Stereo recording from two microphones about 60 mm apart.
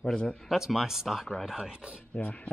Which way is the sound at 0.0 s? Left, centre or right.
Centre.